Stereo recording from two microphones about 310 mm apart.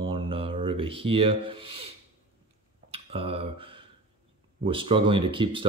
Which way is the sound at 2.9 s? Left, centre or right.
Centre.